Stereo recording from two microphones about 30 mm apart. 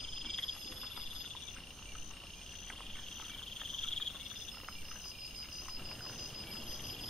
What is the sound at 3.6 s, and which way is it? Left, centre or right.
Frog, centre.